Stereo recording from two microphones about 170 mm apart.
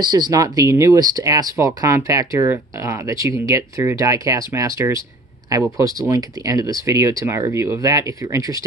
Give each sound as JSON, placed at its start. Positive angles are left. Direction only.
{"t": 0.0, "sound": "speech", "side_deg": -25}